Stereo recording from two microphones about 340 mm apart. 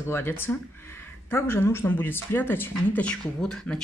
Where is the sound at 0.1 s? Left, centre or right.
Centre.